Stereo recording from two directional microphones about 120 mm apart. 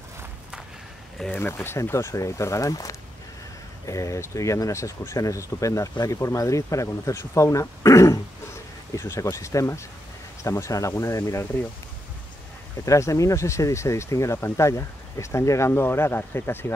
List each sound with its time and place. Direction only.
1.4 s speech: 20° left (ahead or behind)
12.8 s speech: 25° left (ahead or behind)